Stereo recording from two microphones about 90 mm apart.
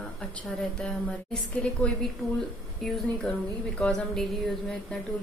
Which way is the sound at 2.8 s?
5° left (ahead or behind).